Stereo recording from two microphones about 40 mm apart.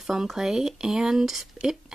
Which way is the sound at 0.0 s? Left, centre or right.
Centre.